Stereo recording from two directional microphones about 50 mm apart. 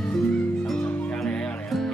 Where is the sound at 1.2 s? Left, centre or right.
Centre.